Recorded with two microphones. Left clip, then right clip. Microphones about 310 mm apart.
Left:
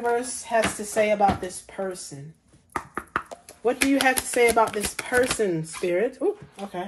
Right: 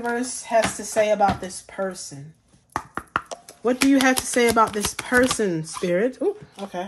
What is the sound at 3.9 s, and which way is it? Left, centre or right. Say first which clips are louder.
Speech: right 2 dB; right.